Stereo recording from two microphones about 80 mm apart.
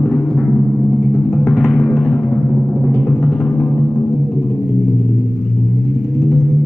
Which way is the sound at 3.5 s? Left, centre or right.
Centre.